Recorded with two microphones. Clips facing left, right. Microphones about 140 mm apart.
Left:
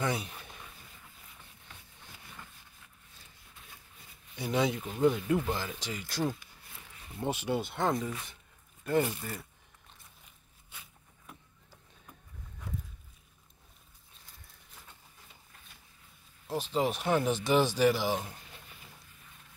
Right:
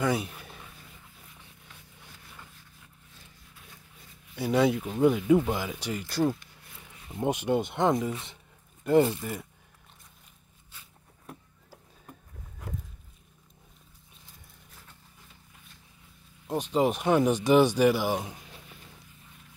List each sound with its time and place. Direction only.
0.0 s a sound: 5° right (ahead or behind)
4.4 s speech: 5° right (ahead or behind)
7.1 s speech: 15° right (ahead or behind)
16.4 s speech: 15° right (ahead or behind)